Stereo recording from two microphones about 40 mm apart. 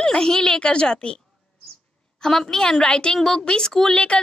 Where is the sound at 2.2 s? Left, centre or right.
Centre.